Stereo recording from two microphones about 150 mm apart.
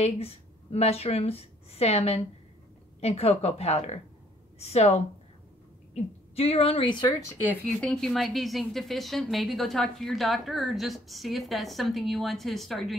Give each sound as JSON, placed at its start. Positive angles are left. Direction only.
{"t": 0.0, "sound": "a woman's voice", "side_deg": 45}
{"t": 7.8, "sound": "a woman's voice", "side_deg": 5}